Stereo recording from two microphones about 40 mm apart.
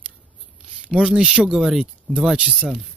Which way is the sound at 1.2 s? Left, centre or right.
Right.